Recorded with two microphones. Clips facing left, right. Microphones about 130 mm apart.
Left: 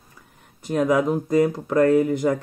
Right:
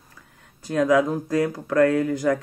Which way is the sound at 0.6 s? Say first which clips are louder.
Even; 20° left (ahead or behind).